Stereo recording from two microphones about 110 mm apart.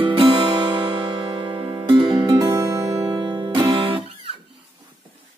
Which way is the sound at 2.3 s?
35° right (ahead or behind).